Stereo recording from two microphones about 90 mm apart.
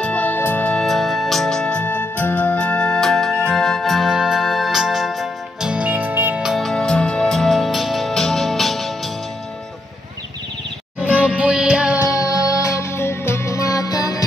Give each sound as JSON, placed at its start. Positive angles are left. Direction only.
{"t": 0.0, "sound": "music", "side_deg": 15}
{"t": 0.7, "sound": "organ", "side_deg": 0}
{"t": 6.4, "sound": "music", "side_deg": 0}
{"t": 6.7, "sound": "music", "side_deg": 10}
{"t": 11.0, "sound": "music", "side_deg": -15}
{"t": 12.0, "sound": "music", "side_deg": 35}